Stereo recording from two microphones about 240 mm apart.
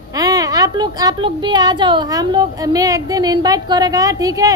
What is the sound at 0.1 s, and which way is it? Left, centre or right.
A woman's voice, centre.